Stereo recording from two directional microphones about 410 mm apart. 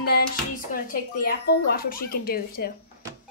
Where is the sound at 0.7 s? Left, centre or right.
Left.